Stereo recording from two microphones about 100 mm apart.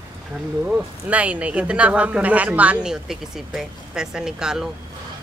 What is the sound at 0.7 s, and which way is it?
Speech, 15° right (ahead or behind).